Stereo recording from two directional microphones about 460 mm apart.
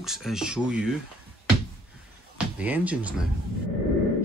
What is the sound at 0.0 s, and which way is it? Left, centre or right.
Speech, centre.